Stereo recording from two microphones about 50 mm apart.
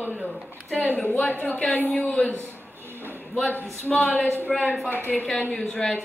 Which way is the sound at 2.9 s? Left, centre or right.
Right.